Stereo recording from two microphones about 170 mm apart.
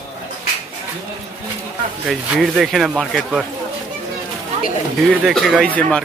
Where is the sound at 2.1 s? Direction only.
Centre (ahead or behind).